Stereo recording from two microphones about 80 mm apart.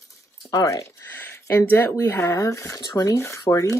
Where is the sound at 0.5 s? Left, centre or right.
Left.